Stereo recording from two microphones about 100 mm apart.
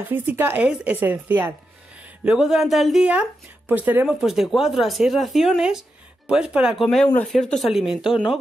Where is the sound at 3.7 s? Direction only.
15° right (ahead or behind).